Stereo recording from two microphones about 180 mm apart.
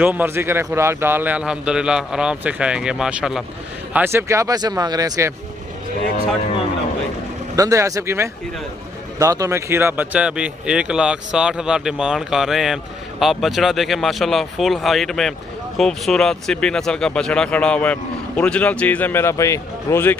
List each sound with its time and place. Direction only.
0.0 s a man's voice: 10° right (ahead or behind)
7.5 s a man's voice: 20° right (ahead or behind); by 20.2 s 15° left (ahead or behind)